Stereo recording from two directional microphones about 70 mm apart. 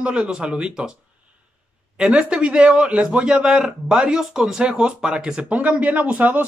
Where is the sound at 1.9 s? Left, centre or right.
Centre.